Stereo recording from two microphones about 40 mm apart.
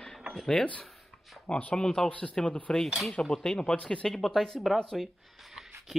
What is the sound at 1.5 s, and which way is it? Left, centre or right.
Speech, left.